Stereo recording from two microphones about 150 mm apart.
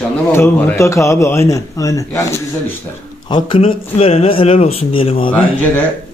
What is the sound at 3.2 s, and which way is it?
Speech, 30° left (ahead or behind).